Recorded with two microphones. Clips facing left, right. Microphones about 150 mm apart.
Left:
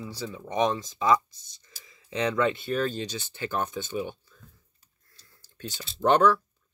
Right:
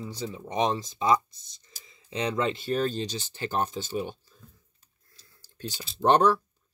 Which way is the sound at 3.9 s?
40° right (ahead or behind).